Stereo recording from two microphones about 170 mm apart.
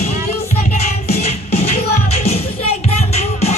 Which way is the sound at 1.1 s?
40° left (ahead or behind).